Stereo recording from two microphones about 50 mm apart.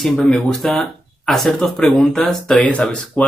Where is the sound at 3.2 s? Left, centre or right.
Left.